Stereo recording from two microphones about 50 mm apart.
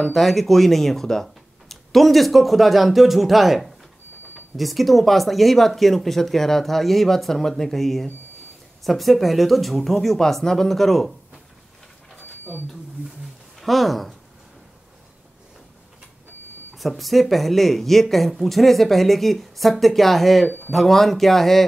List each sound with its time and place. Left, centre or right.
0.0 s speech: centre
12.2 s a sound: left
13.6 s speech: centre
16.7 s speech: centre